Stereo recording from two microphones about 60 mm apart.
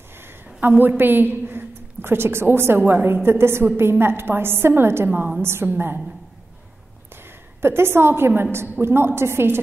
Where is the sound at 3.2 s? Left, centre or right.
Right.